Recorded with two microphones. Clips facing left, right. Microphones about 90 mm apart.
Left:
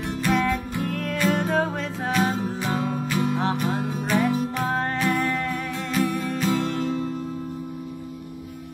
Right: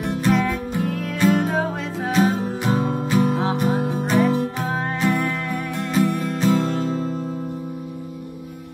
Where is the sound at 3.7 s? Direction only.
20° right (ahead or behind).